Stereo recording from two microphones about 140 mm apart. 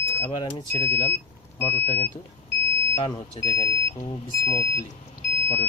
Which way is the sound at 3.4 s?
50° left (ahead or behind).